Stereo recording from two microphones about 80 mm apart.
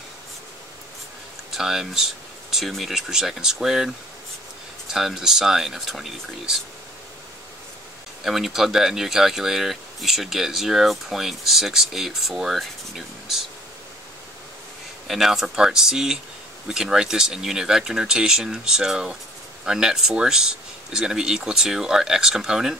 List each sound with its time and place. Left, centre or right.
1.5 s speech: centre
4.9 s speech: centre
8.2 s speech: centre
15.0 s speech: centre